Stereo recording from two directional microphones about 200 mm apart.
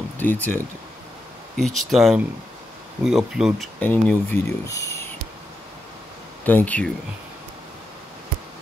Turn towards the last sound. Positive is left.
turn(degrees=5)  # may be behind; listen again after turning